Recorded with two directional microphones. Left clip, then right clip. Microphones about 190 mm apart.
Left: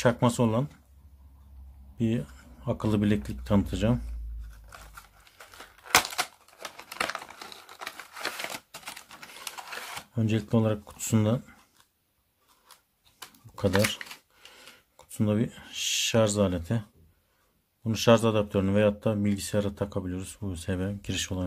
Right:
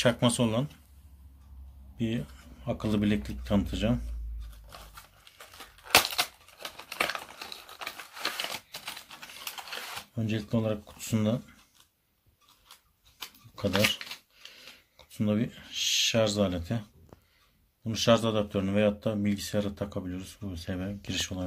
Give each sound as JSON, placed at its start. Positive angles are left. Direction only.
{"t": 0.1, "sound": "speech", "side_deg": 30}
{"t": 2.0, "sound": "speech", "side_deg": 35}
{"t": 6.6, "sound": "typewriter", "side_deg": 15}
{"t": 9.6, "sound": "a sound", "side_deg": 20}
{"t": 10.1, "sound": "speech", "side_deg": 40}
{"t": 13.7, "sound": "speech", "side_deg": 15}
{"t": 14.5, "sound": "speech", "side_deg": 35}
{"t": 17.8, "sound": "speech", "side_deg": 35}